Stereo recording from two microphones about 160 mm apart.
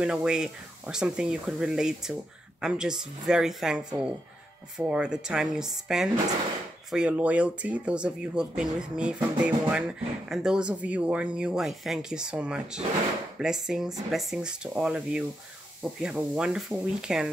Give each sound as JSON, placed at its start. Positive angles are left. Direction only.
{"t": 0.0, "sound": "speech", "side_deg": -5}